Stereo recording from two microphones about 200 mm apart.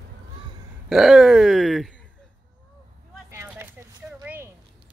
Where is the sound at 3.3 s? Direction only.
10° right (ahead or behind).